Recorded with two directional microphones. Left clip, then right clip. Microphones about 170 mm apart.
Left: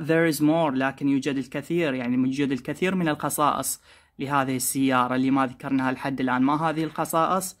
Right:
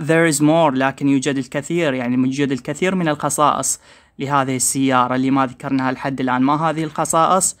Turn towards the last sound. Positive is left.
turn(degrees=-35)  # may be behind; listen again after turning